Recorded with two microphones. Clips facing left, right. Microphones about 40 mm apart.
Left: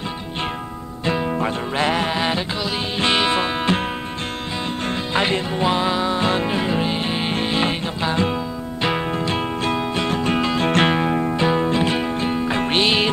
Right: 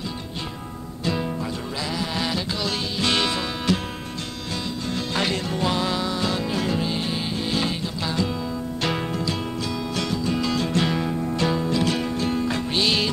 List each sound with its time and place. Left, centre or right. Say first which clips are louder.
1.0 s music: left 4 dB; left
1.4 s music: left 8 dB; left
2.1 s music: left 4 dB; left
5.1 s music: left 5 dB; left
8.8 s music: left 5 dB; left
9.2 s music: left 5 dB; left
12.5 s music: left 5 dB; left